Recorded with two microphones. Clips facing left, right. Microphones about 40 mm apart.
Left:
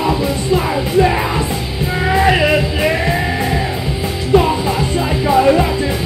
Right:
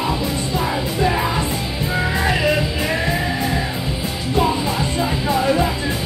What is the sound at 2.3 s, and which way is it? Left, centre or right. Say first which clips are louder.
Music: left 5 dB; left.